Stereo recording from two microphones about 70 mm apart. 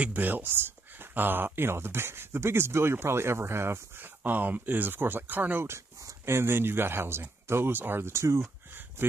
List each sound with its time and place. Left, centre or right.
0.0 s speech: right
4.2 s speech: right
5.7 s speech: right